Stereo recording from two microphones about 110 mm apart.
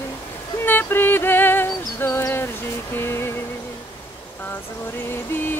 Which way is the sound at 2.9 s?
20° left (ahead or behind).